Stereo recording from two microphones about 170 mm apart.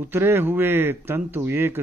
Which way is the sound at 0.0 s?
15° right (ahead or behind).